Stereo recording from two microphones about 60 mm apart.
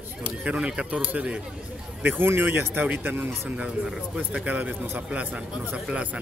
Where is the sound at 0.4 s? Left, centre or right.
Centre.